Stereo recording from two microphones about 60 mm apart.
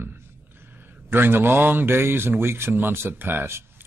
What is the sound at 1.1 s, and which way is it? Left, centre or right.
A man's voice, right.